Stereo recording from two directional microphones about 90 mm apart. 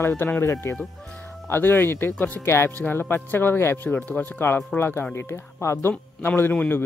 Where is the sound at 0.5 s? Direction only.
35° left (ahead or behind).